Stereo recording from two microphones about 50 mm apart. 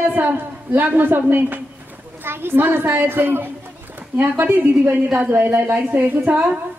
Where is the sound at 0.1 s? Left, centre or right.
Right.